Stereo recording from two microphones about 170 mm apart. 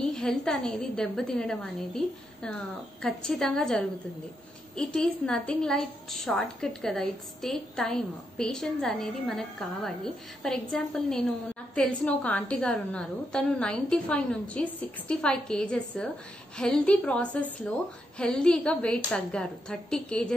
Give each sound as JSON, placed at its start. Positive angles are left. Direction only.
{"t": 0.0, "sound": "a woman's voice", "side_deg": 5}